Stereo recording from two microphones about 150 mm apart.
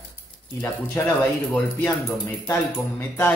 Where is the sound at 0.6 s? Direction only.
15° left (ahead or behind).